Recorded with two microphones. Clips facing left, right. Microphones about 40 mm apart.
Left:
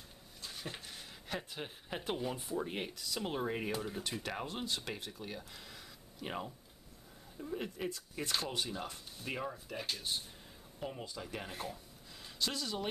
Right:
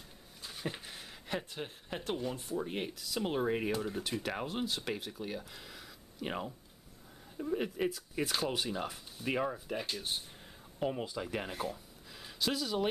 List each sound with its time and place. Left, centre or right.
0.4 s dog: centre
1.5 s speech: centre
7.9 s speech: centre; by 9.8 s right
9.8 s speech: centre
10.8 s speech: right
11.6 s a sound: centre